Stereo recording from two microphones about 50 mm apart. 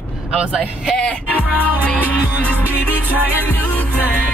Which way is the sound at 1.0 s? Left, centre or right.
Centre.